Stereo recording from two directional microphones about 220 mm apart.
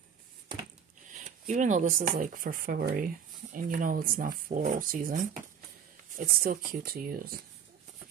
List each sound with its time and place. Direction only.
1.1 s speech: 35° right (ahead or behind)